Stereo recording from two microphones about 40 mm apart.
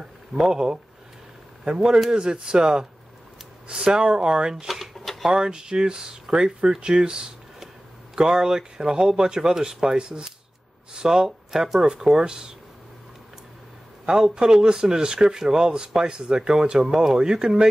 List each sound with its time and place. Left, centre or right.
0.4 s speech: centre
2.0 s speech: right
4.6 s drawer open or close: centre
5.3 s speech: right
10.9 s a sound: centre
11.2 s speech: centre
11.8 s speech: centre
14.1 s speech: centre